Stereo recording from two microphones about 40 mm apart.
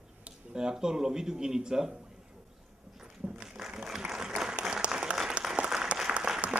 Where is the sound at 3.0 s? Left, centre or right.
Centre.